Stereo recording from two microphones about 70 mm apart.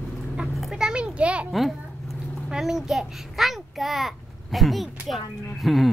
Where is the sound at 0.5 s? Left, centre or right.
Centre.